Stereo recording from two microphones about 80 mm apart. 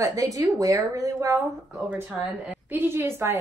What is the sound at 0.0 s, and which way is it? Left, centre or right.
Speech, right.